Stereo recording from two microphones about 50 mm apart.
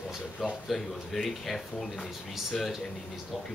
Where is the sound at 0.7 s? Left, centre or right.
Centre.